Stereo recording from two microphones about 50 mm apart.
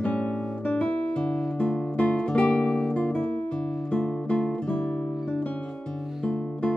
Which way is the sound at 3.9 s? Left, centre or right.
Left.